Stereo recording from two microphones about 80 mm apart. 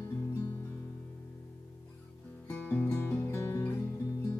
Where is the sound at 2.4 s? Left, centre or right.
Left.